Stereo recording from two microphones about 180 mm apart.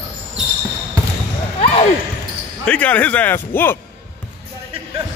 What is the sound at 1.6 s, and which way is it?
Basketball bounce, 35° left (ahead or behind).